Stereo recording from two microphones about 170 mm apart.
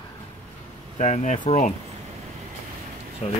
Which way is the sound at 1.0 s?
45° left (ahead or behind).